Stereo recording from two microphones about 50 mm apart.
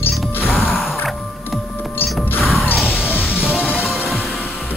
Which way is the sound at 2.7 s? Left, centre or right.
Centre.